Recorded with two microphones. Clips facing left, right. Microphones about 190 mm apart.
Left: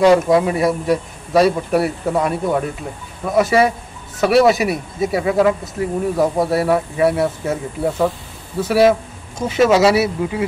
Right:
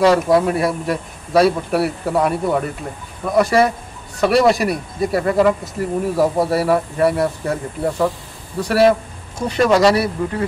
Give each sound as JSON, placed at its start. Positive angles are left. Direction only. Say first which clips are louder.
{"t": 0.0, "sound": "speech", "louder": "left 1 dB", "side_deg": 0}